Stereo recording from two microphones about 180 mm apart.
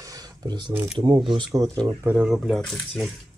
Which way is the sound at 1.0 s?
25° right (ahead or behind).